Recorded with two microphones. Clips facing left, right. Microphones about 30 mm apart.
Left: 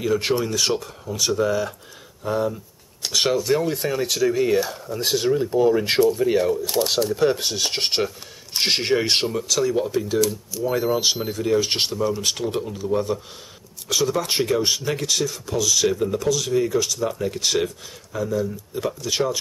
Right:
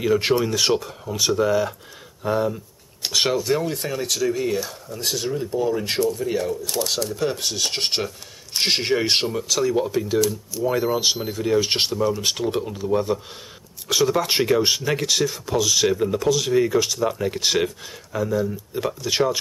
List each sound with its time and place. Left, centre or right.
0.0 s speech: centre